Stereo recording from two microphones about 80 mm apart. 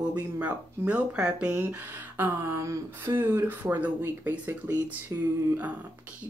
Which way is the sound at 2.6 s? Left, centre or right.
Right.